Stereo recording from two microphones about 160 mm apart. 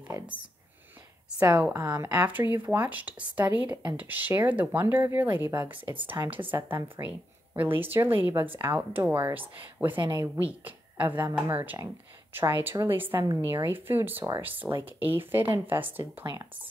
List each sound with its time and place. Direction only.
1.5 s a woman's voice: 10° right (ahead or behind)
1.8 s speech: 20° right (ahead or behind)
2.1 s a woman's voice: 10° right (ahead or behind)
5.5 s speech: 30° right (ahead or behind)
6.3 s a woman's voice: 10° right (ahead or behind)